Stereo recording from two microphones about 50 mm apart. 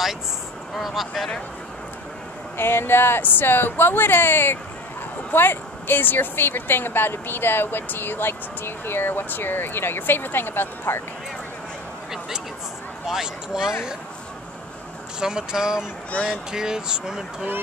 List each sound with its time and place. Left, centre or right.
0.7 s speech: centre
2.5 s speech: left
13.0 s speech: centre
15.1 s speech: centre